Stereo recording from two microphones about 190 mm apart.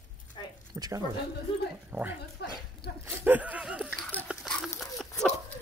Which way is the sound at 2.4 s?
60° left (ahead or behind).